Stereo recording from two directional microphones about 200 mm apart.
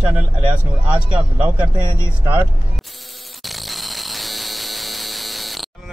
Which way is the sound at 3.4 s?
Centre (ahead or behind).